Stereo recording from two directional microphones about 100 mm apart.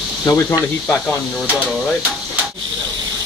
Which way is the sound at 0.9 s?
15° left (ahead or behind).